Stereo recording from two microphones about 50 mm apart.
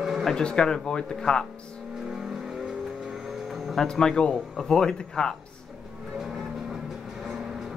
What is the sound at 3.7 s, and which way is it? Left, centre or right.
Speech, centre.